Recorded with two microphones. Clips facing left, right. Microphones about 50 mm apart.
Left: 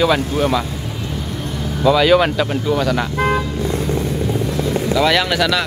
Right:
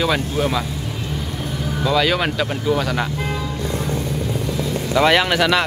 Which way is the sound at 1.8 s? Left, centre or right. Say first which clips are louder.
Left 6 dB; centre.